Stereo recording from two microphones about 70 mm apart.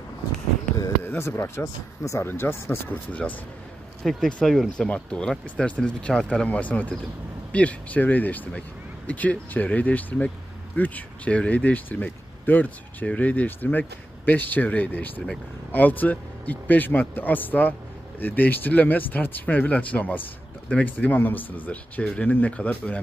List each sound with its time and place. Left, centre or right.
1.0 s speech: left
4.0 s speech: centre